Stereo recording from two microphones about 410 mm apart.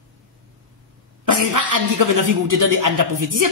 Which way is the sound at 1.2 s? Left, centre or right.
Right.